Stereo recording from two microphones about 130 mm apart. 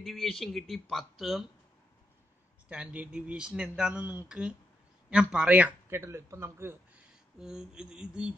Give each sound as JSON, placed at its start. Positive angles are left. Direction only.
{"t": 0.0, "sound": "speech", "side_deg": 0}
{"t": 2.7, "sound": "a man's voice", "side_deg": -10}
{"t": 7.3, "sound": "speech", "side_deg": -5}